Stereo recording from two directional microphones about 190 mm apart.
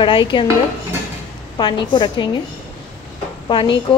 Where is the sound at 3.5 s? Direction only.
25° left (ahead or behind).